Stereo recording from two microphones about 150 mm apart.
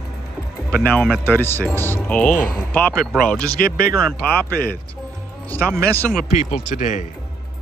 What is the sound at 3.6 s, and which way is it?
Speech, 85° left.